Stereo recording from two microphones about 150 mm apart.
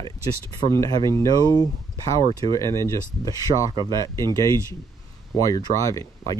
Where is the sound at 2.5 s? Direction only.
20° left (ahead or behind).